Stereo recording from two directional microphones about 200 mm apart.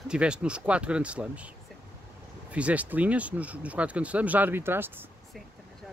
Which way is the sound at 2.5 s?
5° right (ahead or behind).